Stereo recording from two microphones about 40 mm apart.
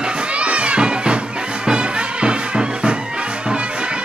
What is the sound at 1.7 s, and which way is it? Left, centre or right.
Music, right.